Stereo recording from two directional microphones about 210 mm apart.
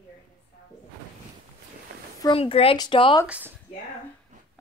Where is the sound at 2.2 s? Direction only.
25° left (ahead or behind).